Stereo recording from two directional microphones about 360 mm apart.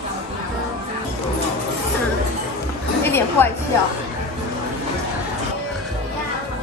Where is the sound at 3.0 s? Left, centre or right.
Centre.